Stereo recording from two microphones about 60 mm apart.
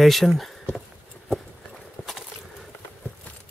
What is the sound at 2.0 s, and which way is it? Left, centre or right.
Boat, left.